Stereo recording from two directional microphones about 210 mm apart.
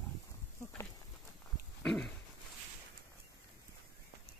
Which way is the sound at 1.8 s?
5° left (ahead or behind).